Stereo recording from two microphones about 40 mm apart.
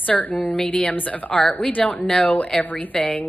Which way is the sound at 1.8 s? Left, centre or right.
Centre.